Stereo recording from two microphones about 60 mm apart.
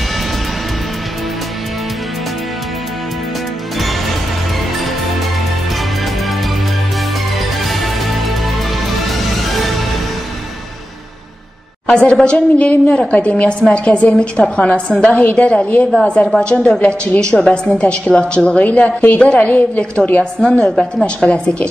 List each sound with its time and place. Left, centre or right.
9.0 s music: centre
12.0 s a woman's voice: centre